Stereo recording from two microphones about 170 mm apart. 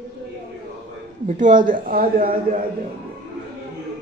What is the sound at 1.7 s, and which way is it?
Speech, 55° right (ahead or behind).